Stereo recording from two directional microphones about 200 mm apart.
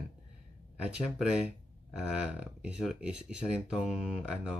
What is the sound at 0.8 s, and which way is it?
Speech, 5° right (ahead or behind).